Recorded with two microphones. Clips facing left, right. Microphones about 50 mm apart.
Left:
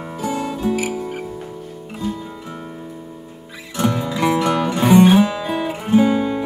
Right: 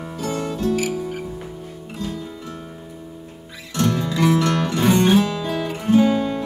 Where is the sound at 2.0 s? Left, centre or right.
Centre.